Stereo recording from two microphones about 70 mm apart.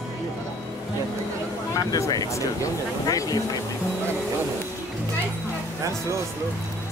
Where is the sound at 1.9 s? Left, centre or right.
Left.